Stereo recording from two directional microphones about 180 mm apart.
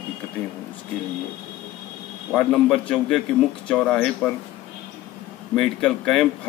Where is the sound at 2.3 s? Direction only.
5° left (ahead or behind).